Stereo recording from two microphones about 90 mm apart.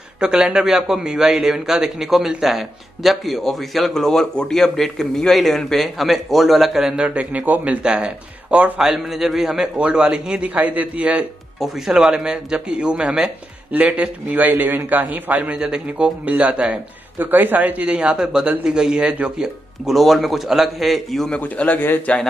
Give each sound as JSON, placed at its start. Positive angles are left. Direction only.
{"t": 0.2, "sound": "a man's voice", "side_deg": -10}
{"t": 11.6, "sound": "a man's voice", "side_deg": -5}
{"t": 21.4, "sound": "a man's voice", "side_deg": 20}